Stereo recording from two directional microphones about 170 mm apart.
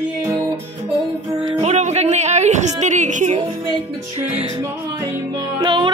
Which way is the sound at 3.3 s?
30° right (ahead or behind).